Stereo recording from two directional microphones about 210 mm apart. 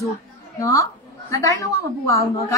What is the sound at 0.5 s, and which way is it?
A woman's voice, 15° left (ahead or behind).